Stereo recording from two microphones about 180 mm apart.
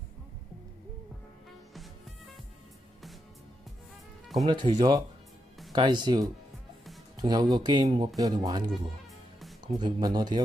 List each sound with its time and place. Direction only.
4.5 s speech: 25° right (ahead or behind)